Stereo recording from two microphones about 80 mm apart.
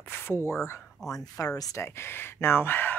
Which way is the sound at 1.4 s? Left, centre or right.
Left.